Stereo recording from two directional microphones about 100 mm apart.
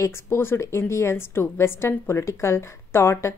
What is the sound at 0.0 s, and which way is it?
A woman's voice, 25° left (ahead or behind).